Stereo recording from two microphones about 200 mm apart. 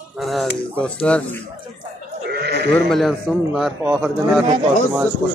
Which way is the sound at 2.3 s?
55° right (ahead or behind).